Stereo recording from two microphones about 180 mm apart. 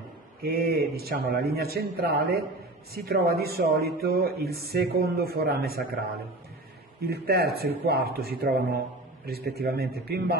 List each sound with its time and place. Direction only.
0.4 s speech: 60° right (ahead or behind)
7.0 s speech: 60° right (ahead or behind)